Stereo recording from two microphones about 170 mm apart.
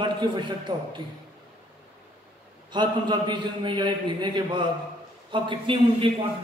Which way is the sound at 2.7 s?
25° right (ahead or behind).